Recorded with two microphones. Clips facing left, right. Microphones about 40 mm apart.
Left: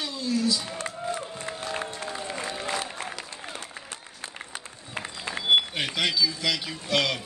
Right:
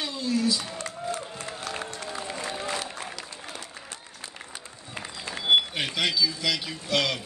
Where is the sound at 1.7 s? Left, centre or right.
Left.